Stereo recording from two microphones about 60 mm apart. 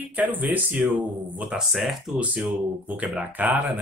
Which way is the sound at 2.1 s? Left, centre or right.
Right.